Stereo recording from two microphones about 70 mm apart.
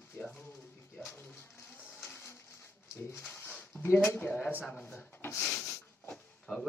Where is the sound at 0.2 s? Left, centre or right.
Centre; by 3.2 s left.